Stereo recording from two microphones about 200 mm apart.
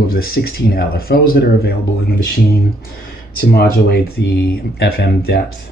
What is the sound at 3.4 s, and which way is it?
Speech, 50° left (ahead or behind).